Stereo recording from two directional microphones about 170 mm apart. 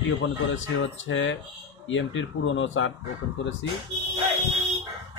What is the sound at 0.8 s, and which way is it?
Speech, 90° left.